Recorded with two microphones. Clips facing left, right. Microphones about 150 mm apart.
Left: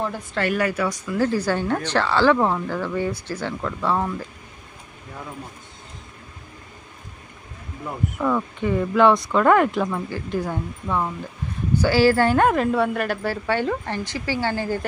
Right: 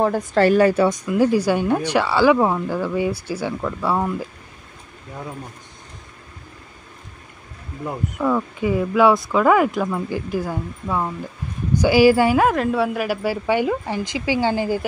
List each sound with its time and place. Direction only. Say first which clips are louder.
0.0 s a woman's voice: right 8 dB; 45° right (ahead or behind)
1.0 s speech: right 4 dB; 15° right (ahead or behind)
8.2 s speech: right 2 dB; 10° right (ahead or behind)
10.0 s speech: right 2 dB; 15° right (ahead or behind)